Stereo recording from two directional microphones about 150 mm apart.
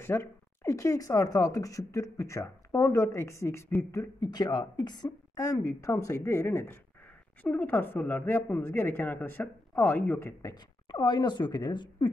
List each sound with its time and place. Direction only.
0.0 s a woman's voice: 15° left (ahead or behind)